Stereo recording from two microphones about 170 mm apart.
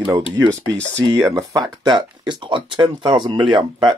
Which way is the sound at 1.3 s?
20° right (ahead or behind).